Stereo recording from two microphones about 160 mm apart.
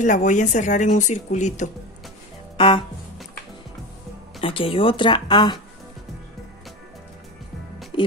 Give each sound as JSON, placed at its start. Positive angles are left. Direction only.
{"t": 0.0, "sound": "speech", "side_deg": 50}
{"t": 2.5, "sound": "music", "side_deg": 35}
{"t": 4.4, "sound": "speech", "side_deg": 35}